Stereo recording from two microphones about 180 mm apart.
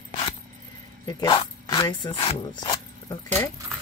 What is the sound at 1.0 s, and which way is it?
Speech, 25° left (ahead or behind).